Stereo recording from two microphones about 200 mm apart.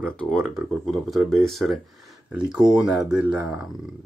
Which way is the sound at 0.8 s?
Centre (ahead or behind).